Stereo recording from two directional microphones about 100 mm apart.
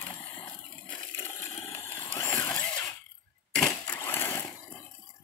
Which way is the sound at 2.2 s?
25° left (ahead or behind).